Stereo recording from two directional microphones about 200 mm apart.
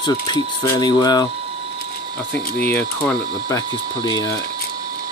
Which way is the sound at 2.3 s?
5° left (ahead or behind).